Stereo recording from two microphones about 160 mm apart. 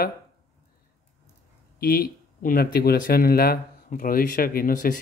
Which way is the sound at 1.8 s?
65° left (ahead or behind).